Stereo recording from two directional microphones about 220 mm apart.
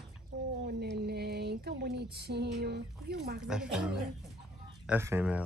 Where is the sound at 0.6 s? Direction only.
45° right (ahead or behind).